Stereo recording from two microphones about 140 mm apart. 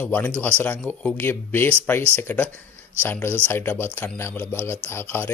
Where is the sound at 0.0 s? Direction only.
10° left (ahead or behind).